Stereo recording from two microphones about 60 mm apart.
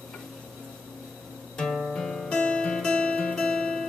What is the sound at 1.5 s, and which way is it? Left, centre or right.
Music, centre.